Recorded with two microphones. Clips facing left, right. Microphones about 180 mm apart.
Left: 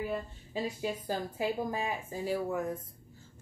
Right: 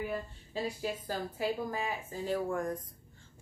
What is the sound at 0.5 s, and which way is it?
A woman's voice, 15° left (ahead or behind).